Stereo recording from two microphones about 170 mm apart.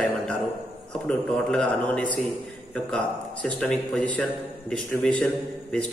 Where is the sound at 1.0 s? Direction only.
5° left (ahead or behind).